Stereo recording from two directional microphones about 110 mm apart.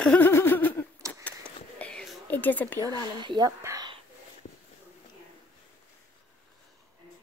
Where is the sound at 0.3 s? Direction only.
20° left (ahead or behind).